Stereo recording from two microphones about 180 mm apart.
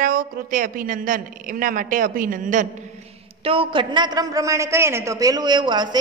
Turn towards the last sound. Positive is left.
turn(degrees=-25)  # may be behind; listen again after turning